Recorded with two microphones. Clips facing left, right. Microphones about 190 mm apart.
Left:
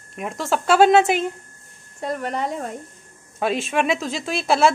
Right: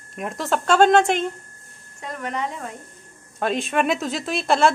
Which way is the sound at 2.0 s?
35° left (ahead or behind).